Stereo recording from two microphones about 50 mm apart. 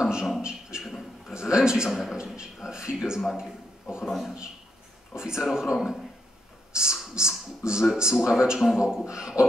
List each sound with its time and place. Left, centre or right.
0.0 s a sound: centre
1.3 s a man's voice: centre
1.9 s a man's voice: centre
2.1 s a sound: centre
4.0 s a man's voice: centre
5.1 s a man's voice: centre